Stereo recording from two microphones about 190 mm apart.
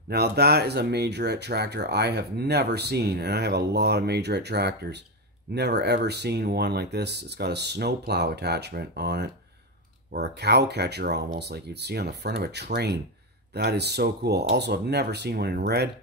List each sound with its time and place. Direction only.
0.1 s speech: 60° right (ahead or behind)